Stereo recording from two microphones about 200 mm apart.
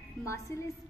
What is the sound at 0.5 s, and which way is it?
Speech, 15° left (ahead or behind).